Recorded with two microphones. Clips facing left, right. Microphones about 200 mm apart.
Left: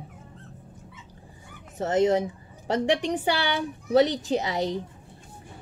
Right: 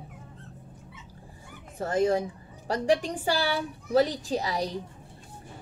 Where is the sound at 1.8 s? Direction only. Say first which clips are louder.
Left 3 dB; 20° left (ahead or behind).